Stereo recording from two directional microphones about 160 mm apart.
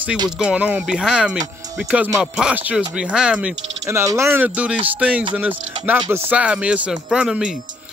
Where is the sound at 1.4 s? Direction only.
20° right (ahead or behind).